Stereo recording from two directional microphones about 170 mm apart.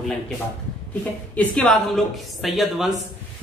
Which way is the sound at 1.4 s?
5° left (ahead or behind).